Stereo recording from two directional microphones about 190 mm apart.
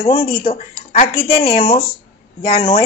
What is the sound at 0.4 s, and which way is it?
A woman's voice, 30° left (ahead or behind).